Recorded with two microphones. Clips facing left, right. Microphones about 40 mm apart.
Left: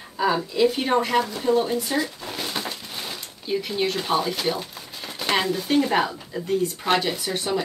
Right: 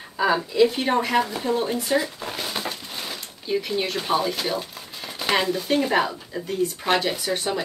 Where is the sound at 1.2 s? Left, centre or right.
Centre.